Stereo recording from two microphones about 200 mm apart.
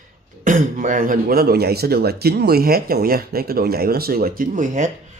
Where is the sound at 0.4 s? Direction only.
40° right (ahead or behind).